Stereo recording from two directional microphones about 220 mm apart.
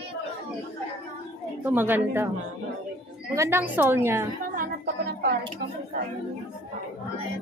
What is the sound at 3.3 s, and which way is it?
Speech, 10° right (ahead or behind).